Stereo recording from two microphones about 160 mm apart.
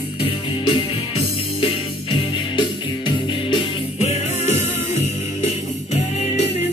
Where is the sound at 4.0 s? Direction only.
45° left (ahead or behind).